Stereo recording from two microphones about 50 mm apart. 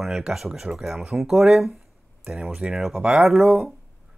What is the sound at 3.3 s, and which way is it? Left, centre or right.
Speech, centre.